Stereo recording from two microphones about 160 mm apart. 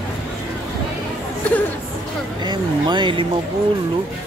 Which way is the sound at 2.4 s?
30° right (ahead or behind).